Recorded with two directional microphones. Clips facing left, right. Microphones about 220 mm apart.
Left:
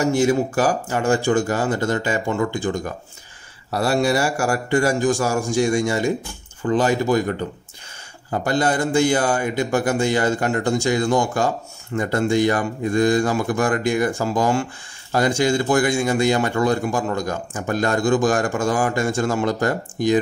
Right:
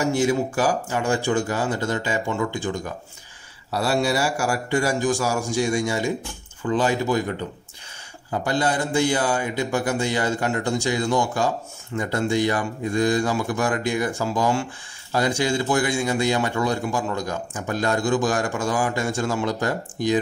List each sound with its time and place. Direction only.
0.0 s speech: 45° left (ahead or behind)
8.3 s speech: 50° left (ahead or behind)